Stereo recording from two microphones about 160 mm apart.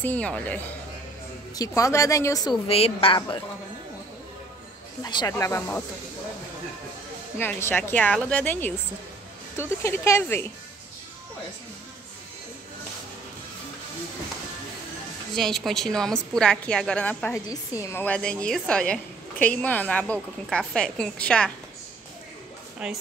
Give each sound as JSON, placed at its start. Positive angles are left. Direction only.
{"t": 0.0, "sound": "a woman's voice", "side_deg": 10}
{"t": 1.7, "sound": "speech", "side_deg": 20}
{"t": 2.7, "sound": "a woman's voice", "side_deg": 35}
{"t": 5.0, "sound": "speech", "side_deg": 25}
{"t": 7.3, "sound": "a woman's voice", "side_deg": 15}
{"t": 15.3, "sound": "a woman's voice", "side_deg": 0}
{"t": 22.8, "sound": "a woman's voice", "side_deg": -5}